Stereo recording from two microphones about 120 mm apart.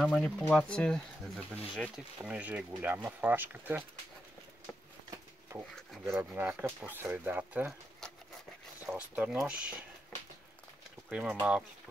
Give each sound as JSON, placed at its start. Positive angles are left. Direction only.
{"t": 0.0, "sound": "speech", "side_deg": 5}
{"t": 2.2, "sound": "speech", "side_deg": -10}
{"t": 6.0, "sound": "speech", "side_deg": -20}
{"t": 8.8, "sound": "speech", "side_deg": -15}
{"t": 11.1, "sound": "speech", "side_deg": -10}